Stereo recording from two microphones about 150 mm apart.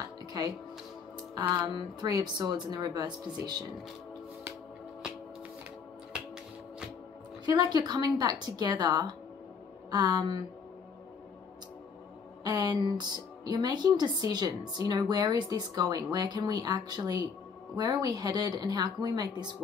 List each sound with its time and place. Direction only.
0.3 s speech: 25° right (ahead or behind)
2.0 s speech: 25° right (ahead or behind)
7.4 s speech: 30° right (ahead or behind)
12.4 s speech: 25° right (ahead or behind)